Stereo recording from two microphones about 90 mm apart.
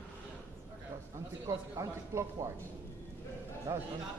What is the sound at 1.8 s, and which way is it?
Speech, 35° right (ahead or behind).